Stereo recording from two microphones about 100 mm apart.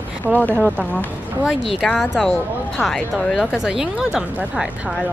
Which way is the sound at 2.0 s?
Centre (ahead or behind).